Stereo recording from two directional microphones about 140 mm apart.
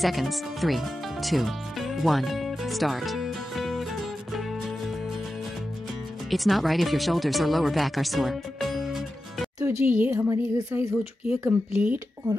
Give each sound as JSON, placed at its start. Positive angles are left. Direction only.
{"t": 0.0, "sound": "music", "side_deg": 0}
{"t": 6.3, "sound": "speech", "side_deg": 0}
{"t": 9.6, "sound": "speech", "side_deg": -20}
{"t": 11.7, "sound": "speech", "side_deg": -10}